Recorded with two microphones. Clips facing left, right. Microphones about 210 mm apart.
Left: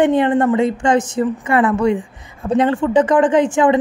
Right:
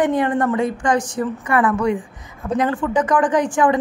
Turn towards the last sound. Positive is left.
turn(degrees=25)  # may be behind; listen again after turning